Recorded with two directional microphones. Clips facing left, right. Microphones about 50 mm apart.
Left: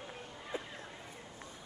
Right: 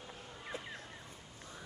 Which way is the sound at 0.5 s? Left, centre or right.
Left.